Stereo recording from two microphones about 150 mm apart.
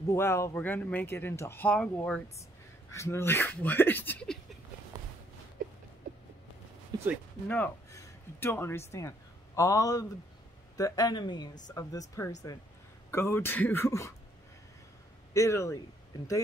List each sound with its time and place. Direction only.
0.1 s speech: 20° left (ahead or behind)
2.9 s speech: 20° left (ahead or behind)
6.9 s a sound: 30° right (ahead or behind)
7.4 s speech: 10° left (ahead or behind)
15.3 s speech: 20° left (ahead or behind)